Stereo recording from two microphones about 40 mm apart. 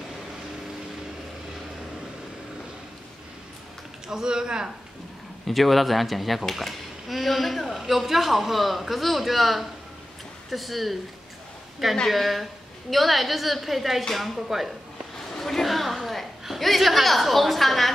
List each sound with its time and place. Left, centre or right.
4.1 s speech: centre
5.5 s a woman's voice: centre
6.5 s a sound: centre
7.8 s a woman's voice: centre
12.1 s a woman's voice: centre
15.3 s a woman's voice: centre